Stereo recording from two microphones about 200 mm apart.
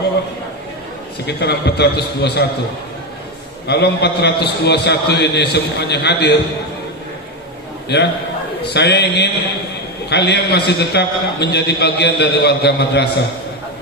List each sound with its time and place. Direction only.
1.2 s a man's voice: 55° left (ahead or behind)
3.6 s a man's voice: 55° left (ahead or behind)
7.9 s a man's voice: 55° left (ahead or behind)